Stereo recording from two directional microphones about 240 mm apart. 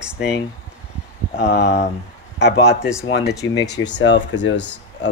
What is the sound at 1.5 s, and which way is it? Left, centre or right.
Speech, left.